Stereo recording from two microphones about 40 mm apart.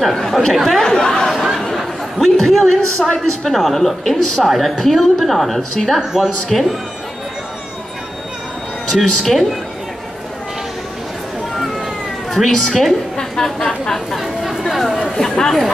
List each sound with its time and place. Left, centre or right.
0.1 s a woman's voice: centre
0.8 s speech: centre
1.2 s a sound: centre
1.8 s a man's voice: centre
5.9 s speech: centre
6.5 s a woman's voice: centre
8.9 s speech: centre
12.3 s a woman's voice: centre
14.1 s speech: centre
15.1 s chatter: centre